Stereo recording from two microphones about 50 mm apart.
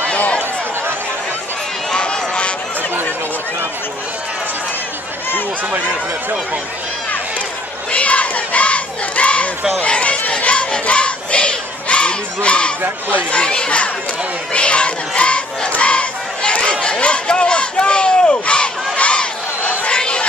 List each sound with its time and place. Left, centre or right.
0.0 s a sound: left
1.9 s run: centre
7.9 s battle cry: left
9.8 s crowd: left
13.1 s speech: left
14.5 s battle cry: left
16.8 s crowd: left